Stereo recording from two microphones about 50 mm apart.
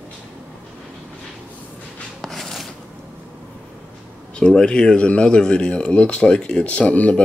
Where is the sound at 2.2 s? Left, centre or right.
Centre.